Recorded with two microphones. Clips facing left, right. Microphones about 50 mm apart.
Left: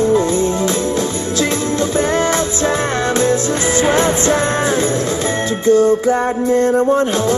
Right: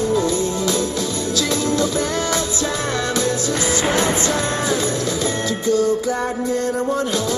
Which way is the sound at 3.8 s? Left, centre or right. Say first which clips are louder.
Left 7 dB; left.